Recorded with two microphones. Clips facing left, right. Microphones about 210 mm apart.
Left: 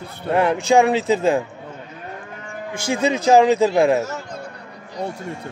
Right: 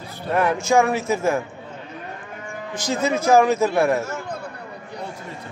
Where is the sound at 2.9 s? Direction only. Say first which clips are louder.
Left 2 dB; 15° left (ahead or behind).